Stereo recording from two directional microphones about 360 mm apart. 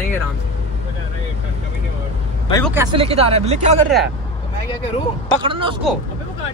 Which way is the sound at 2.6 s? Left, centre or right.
Centre.